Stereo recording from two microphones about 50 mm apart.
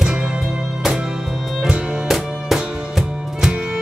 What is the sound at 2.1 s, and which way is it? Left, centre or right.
Music, centre.